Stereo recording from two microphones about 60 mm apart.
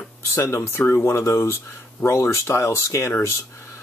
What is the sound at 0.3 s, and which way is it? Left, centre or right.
Speech, left.